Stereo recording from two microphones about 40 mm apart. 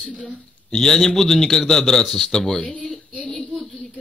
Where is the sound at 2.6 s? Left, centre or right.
Left.